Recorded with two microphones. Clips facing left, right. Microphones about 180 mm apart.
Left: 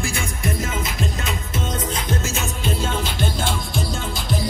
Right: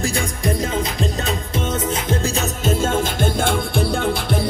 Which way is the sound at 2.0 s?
35° right (ahead or behind).